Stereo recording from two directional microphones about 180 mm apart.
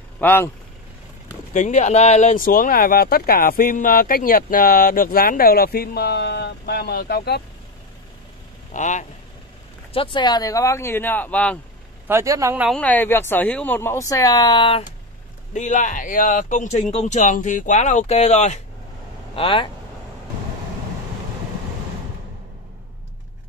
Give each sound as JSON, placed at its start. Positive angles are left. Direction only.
{"t": 0.2, "sound": "speech", "side_deg": 10}
{"t": 1.5, "sound": "speech", "side_deg": 45}
{"t": 8.7, "sound": "speech", "side_deg": 40}
{"t": 9.9, "sound": "speech", "side_deg": 25}
{"t": 12.1, "sound": "speech", "side_deg": -15}
{"t": 12.6, "sound": "speech", "side_deg": 5}
{"t": 15.5, "sound": "speech", "side_deg": 40}